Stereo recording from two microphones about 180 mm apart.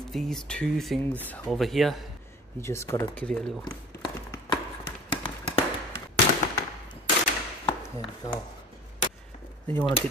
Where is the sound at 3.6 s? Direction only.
25° left (ahead or behind).